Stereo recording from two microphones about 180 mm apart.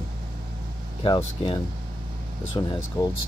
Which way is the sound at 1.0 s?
25° left (ahead or behind).